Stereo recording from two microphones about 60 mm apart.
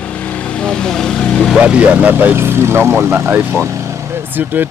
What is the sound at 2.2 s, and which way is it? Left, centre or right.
Speech, right.